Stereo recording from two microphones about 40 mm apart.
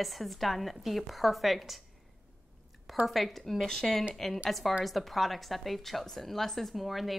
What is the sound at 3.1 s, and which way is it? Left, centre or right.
A woman's voice, centre.